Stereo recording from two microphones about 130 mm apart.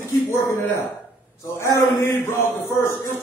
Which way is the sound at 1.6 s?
20° left (ahead or behind).